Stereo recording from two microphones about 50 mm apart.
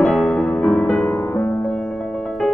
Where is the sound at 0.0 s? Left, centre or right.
Centre.